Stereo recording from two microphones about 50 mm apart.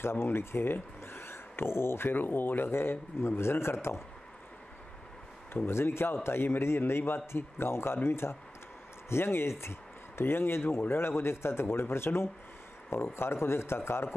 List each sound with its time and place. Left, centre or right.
0.0 s speech: left
5.7 s a man's voice: left